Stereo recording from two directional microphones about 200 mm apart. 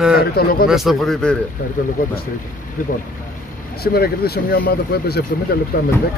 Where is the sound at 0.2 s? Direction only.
50° left (ahead or behind).